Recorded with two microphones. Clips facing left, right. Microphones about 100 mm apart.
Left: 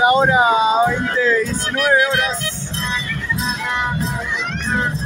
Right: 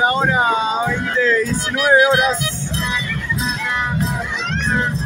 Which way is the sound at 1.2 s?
5° left (ahead or behind).